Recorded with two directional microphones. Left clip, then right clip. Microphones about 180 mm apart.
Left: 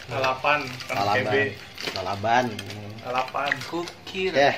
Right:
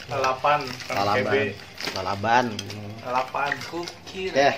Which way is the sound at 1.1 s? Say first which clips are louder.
Even; 35° right (ahead or behind).